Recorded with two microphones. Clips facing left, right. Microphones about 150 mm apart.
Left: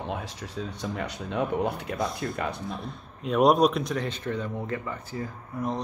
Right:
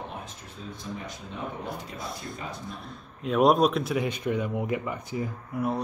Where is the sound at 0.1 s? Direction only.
85° left; by 2.6 s 70° left (ahead or behind).